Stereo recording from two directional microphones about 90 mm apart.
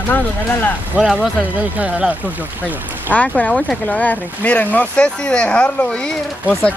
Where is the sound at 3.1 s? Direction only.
15° left (ahead or behind).